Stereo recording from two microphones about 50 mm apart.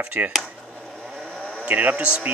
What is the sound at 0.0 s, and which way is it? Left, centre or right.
Speech, right.